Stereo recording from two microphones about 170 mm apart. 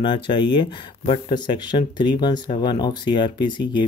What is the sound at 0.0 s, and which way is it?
Speech, 30° left (ahead or behind).